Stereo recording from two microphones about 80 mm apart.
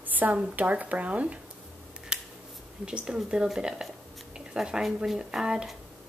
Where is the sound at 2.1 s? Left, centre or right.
Centre.